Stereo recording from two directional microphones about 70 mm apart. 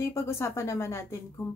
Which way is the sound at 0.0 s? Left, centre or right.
Left.